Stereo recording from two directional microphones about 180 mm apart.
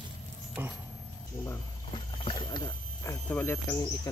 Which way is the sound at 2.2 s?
25° left (ahead or behind).